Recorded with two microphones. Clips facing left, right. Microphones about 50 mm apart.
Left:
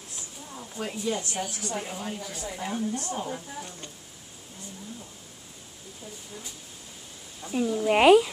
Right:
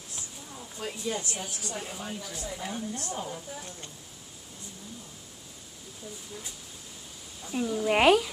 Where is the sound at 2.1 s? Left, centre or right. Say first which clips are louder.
Left 2 dB; left.